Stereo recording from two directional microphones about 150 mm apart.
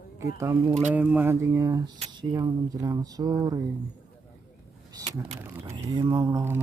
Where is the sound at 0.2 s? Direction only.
20° right (ahead or behind).